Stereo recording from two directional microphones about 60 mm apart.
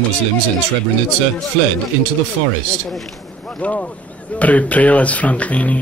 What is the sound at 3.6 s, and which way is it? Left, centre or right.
Speech, left.